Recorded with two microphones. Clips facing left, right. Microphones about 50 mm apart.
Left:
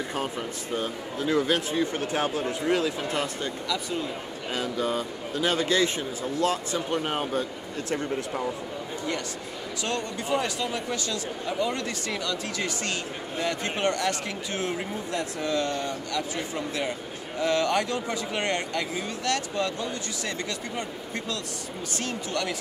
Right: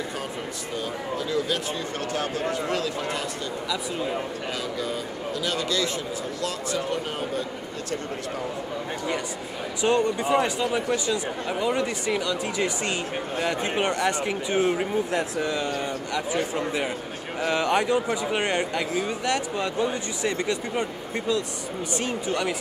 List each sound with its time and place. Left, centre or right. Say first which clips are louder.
0.7 s speech: right 1 dB; left
2.1 s speech: right 1 dB; left
4.7 s speech: left 2 dB; left
9.8 s speech: right 9 dB; centre